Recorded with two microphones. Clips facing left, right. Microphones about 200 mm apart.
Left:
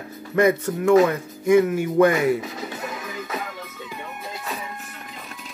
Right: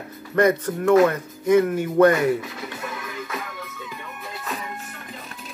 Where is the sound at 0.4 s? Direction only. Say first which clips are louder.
Even; 10° left (ahead or behind).